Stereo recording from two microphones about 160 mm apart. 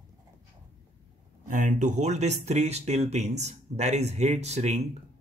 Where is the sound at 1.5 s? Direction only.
50° right (ahead or behind).